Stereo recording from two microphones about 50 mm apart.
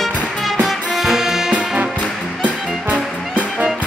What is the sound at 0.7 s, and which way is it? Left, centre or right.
Music, centre.